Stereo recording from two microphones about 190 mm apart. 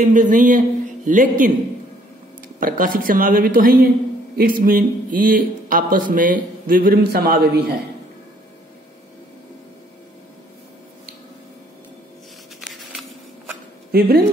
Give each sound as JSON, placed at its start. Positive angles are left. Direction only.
{"t": 0.0, "sound": "speech", "side_deg": -40}
{"t": 2.6, "sound": "speech", "side_deg": -45}
{"t": 12.5, "sound": "a sound", "side_deg": 0}
{"t": 13.9, "sound": "speech", "side_deg": -55}